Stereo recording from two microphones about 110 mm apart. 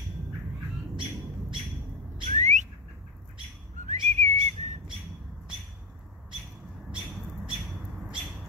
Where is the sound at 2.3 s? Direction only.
90° right.